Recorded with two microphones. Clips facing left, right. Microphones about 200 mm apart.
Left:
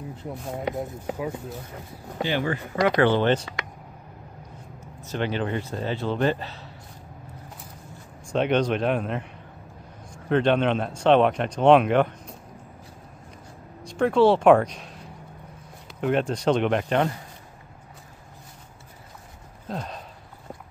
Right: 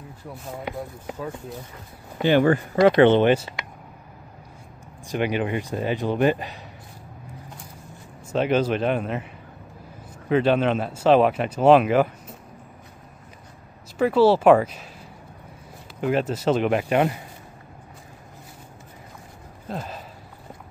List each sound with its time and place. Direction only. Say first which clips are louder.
2.2 s speech: right 9 dB; 55° right (ahead or behind)
2.7 s speech: right 4 dB; 25° right (ahead or behind)
5.0 s speech: right 3 dB; 15° right (ahead or behind)
8.3 s speech: right 1 dB; 5° right (ahead or behind)
13.8 s speech: right 1 dB; 5° right (ahead or behind)
19.7 s a sound: right 1 dB; 5° right (ahead or behind)